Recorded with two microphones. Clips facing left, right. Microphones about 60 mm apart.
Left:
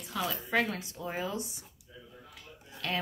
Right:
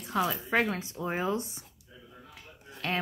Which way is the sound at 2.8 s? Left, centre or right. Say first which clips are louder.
Right 2 dB; right.